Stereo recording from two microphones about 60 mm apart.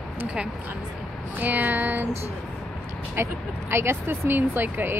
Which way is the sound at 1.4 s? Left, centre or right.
Right.